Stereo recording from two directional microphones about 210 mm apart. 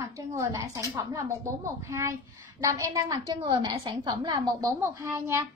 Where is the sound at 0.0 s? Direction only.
15° right (ahead or behind).